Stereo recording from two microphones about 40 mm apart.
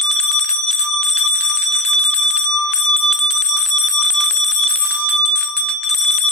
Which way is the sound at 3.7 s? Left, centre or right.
Centre.